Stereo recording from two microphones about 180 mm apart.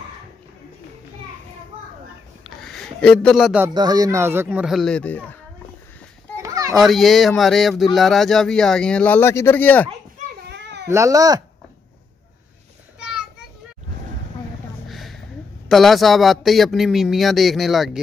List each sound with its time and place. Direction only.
2.7 s speech: 5° left (ahead or behind)
3.7 s speech: 20° right (ahead or behind); by 5.4 s 10° left (ahead or behind)
6.3 s children playing: 20° right (ahead or behind)
6.8 s speech: centre (ahead or behind)
10.5 s baby cry: 70° right (ahead or behind)
10.9 s speech: 15° right (ahead or behind)
14.9 s a sound: centre (ahead or behind)
15.7 s speech: centre (ahead or behind)